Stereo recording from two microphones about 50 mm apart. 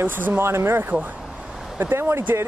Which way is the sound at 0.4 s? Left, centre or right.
Right.